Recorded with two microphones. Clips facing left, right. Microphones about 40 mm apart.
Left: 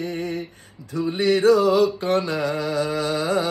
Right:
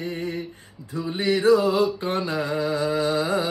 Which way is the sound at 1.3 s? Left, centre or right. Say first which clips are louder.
Left 2 dB; left.